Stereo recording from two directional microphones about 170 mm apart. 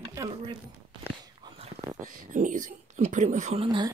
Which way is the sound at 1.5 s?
25° right (ahead or behind).